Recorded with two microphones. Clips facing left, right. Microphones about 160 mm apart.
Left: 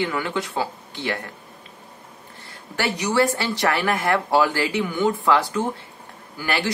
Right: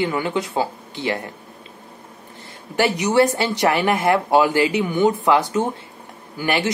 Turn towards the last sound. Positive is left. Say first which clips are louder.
# right 4 dB
turn(degrees=-20)  # may be behind; listen again after turning